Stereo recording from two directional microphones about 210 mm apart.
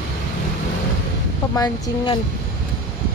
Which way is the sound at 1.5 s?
15° left (ahead or behind).